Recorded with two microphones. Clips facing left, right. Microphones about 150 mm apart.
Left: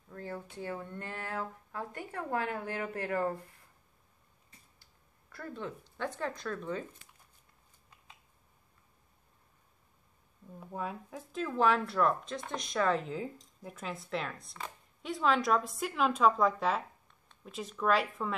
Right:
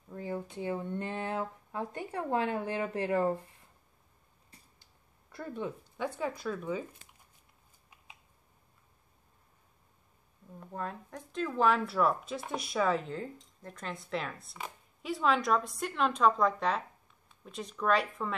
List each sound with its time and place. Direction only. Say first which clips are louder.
0.1 s speech: right 4 dB; 15° right (ahead or behind)
5.3 s speech: right 3 dB; 20° right (ahead or behind)
10.6 s speech: even; 5° left (ahead or behind)